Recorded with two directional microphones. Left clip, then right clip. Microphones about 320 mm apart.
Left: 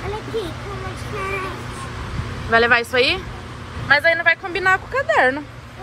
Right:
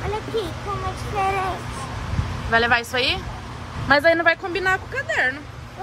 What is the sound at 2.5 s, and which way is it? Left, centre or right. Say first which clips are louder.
Speech: left 4 dB; centre.